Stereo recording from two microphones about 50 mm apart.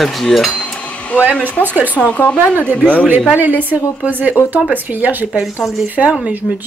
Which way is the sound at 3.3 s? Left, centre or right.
Right.